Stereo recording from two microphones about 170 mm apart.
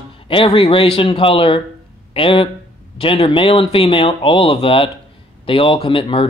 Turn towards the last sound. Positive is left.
turn(degrees=30)  # may be behind; listen again after turning